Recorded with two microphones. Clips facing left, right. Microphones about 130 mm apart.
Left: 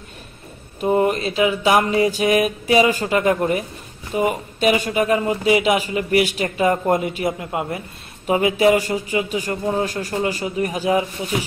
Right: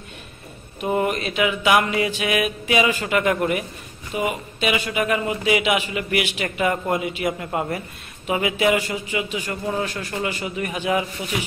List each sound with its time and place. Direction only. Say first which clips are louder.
0.8 s speech: left 4 dB; 30° left (ahead or behind)
7.3 s speech: even; 20° left (ahead or behind)
8.3 s speech: left 4 dB; 35° left (ahead or behind)